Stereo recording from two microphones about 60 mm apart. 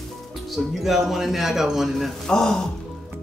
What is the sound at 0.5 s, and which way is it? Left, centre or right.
Speech, centre.